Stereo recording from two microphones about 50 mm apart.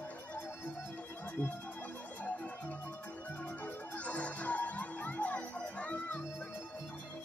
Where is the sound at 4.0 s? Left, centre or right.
Left.